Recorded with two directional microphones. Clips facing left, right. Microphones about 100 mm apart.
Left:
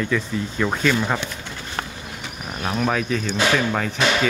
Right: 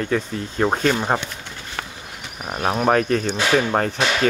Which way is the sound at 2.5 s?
45° right (ahead or behind).